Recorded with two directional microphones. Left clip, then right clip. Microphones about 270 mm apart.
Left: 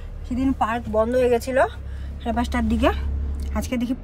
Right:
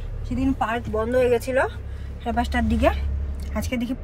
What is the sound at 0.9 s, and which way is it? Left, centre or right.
Speech, centre.